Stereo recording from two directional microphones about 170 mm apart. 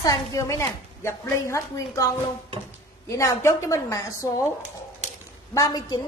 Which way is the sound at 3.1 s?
20° left (ahead or behind).